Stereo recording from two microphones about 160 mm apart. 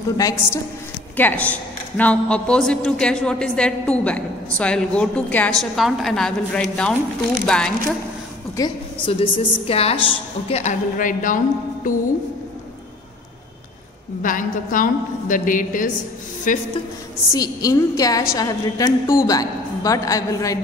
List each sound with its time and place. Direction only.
0.2 s a woman's voice: 20° left (ahead or behind)
1.1 s a woman's voice: 10° left (ahead or behind)
8.5 s a woman's voice: 30° left (ahead or behind); by 11.9 s 55° left (ahead or behind)
14.2 s a woman's voice: 55° left (ahead or behind)
17.3 s a woman's voice: 20° left (ahead or behind)